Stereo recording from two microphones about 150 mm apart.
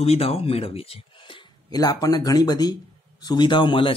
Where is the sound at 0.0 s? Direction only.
45° left (ahead or behind).